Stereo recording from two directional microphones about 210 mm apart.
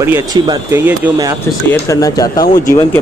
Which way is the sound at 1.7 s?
15° left (ahead or behind).